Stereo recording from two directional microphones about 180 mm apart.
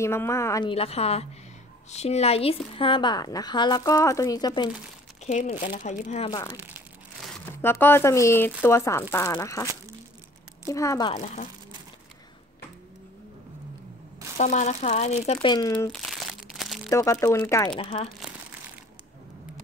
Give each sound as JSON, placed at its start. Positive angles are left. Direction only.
{"t": 0.0, "sound": "speech", "side_deg": 15}
{"t": 0.7, "sound": "speech", "side_deg": 35}
{"t": 5.2, "sound": "speech", "side_deg": 40}
{"t": 6.3, "sound": "speech", "side_deg": 20}
{"t": 7.6, "sound": "speech", "side_deg": 10}
{"t": 10.7, "sound": "speech", "side_deg": 15}
{"t": 14.4, "sound": "speech", "side_deg": 45}
{"t": 15.4, "sound": "speech", "side_deg": 25}
{"t": 15.9, "sound": "crumpling", "side_deg": 0}
{"t": 16.9, "sound": "speech", "side_deg": 15}
{"t": 17.7, "sound": "speech", "side_deg": 30}